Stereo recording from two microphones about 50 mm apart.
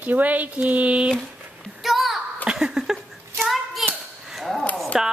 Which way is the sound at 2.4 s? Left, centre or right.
Centre.